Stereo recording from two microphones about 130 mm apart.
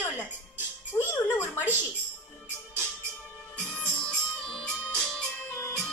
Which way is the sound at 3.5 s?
10° left (ahead or behind).